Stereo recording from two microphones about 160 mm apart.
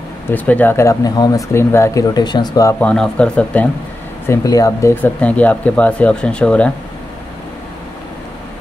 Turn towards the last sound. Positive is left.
turn(degrees=5)  # may be behind; listen again after turning